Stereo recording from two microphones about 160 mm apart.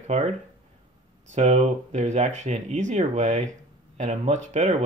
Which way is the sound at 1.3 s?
50° right (ahead or behind).